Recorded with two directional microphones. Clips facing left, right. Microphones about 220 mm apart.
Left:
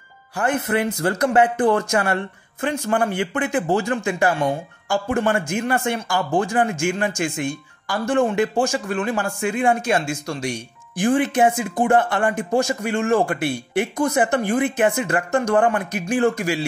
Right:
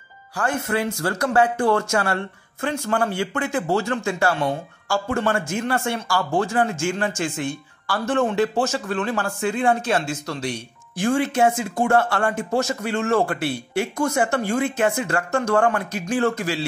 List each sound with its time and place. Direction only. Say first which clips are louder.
0.4 s speech: left 2 dB; 20° left (ahead or behind)